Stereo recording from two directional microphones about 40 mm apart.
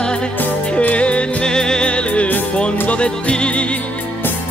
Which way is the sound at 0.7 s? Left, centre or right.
Left.